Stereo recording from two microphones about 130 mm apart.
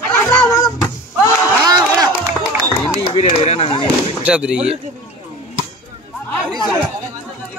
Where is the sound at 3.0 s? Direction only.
45° left (ahead or behind).